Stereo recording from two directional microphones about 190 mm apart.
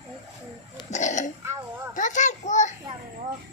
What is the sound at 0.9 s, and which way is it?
A child's voice, 40° left (ahead or behind).